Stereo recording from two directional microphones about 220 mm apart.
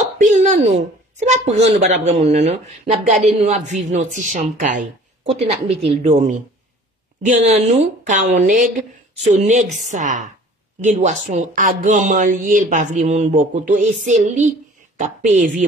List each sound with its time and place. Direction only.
0.2 s speech: 35° right (ahead or behind)